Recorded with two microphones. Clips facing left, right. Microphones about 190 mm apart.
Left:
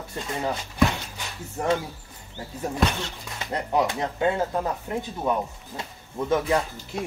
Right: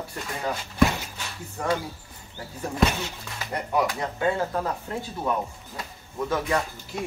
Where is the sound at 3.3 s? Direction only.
25° left (ahead or behind).